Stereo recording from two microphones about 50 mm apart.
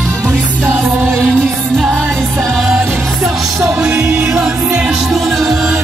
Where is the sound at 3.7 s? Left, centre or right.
Centre.